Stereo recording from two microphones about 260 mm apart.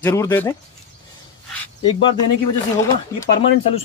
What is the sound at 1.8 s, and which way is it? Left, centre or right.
Speech, centre.